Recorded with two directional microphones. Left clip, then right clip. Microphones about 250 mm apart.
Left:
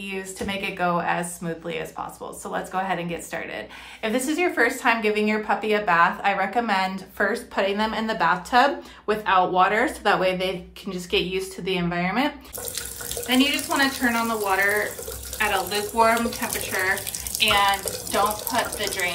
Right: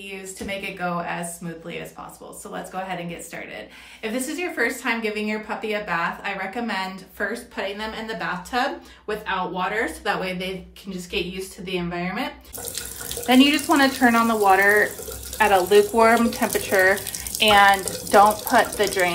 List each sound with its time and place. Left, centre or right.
0.0 s a woman's voice: centre
2.5 s a woman's voice: centre
11.1 s a woman's voice: left
13.3 s a woman's voice: right